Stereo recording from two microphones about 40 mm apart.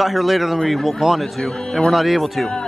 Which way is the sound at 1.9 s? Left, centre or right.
Centre.